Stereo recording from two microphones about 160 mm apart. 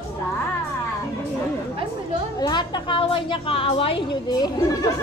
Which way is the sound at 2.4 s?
30° left (ahead or behind).